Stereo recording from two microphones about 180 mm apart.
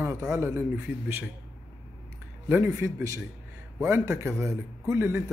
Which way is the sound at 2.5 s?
10° right (ahead or behind).